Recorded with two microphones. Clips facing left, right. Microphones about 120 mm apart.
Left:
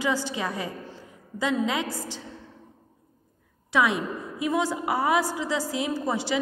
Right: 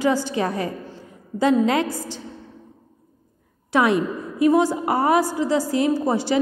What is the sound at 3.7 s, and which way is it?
A woman's voice, 50° right (ahead or behind).